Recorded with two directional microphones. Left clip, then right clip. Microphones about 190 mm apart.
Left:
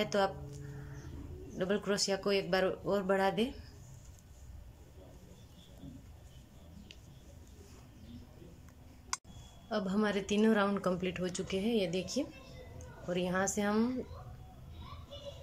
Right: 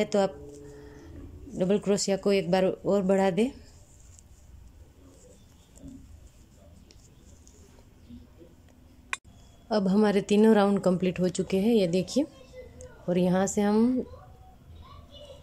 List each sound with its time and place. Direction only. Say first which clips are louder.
0.0 s speech: right 6 dB; 20° right (ahead or behind)
1.6 s speech: right 7 dB; 20° right (ahead or behind)
9.7 s speech: right 9 dB; 25° right (ahead or behind)